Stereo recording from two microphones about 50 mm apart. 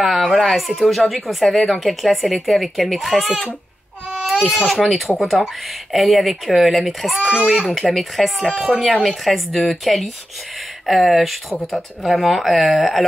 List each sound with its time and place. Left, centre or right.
0.4 s speech: centre
4.2 s baby cry: centre
4.8 s speech: centre
7.2 s a child's voice: centre
7.6 s speech: centre